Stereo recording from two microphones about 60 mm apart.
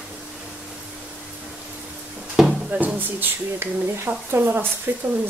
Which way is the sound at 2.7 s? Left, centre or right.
Right.